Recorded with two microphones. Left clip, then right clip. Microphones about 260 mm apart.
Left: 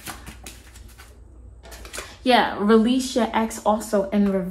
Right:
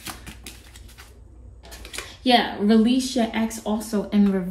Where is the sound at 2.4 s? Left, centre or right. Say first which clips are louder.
Left 3 dB; centre.